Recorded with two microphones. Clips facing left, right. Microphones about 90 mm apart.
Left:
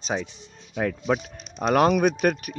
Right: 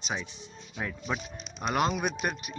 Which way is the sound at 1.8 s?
60° left (ahead or behind).